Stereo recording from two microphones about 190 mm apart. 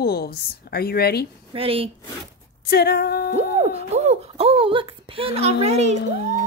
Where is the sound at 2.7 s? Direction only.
55° left (ahead or behind).